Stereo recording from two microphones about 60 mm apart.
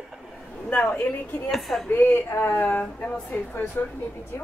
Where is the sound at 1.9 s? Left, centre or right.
Left.